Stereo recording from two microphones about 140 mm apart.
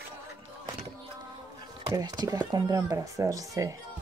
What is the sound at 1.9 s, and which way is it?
Speech, 25° right (ahead or behind).